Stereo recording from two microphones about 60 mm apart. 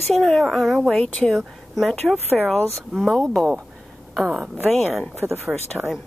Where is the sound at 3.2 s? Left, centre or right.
Centre.